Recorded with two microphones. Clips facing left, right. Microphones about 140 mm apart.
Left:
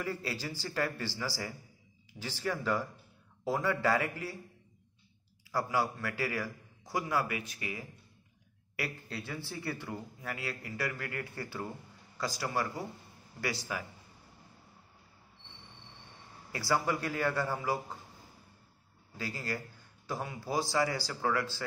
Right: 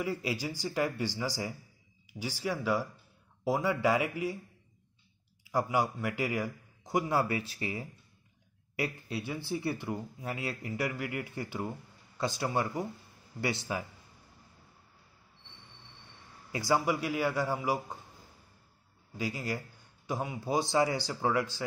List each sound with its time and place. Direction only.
0.0 s speech: 15° right (ahead or behind)
5.5 s a man's voice: 15° right (ahead or behind)
8.7 s a man's voice: 20° right (ahead or behind)
16.5 s speech: 20° right (ahead or behind)
19.1 s a man's voice: 15° right (ahead or behind)